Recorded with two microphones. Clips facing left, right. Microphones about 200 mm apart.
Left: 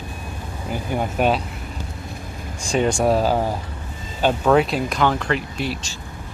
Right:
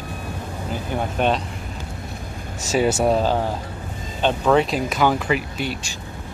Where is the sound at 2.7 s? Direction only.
5° right (ahead or behind).